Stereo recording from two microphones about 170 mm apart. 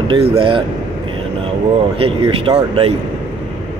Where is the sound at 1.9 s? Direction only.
35° right (ahead or behind).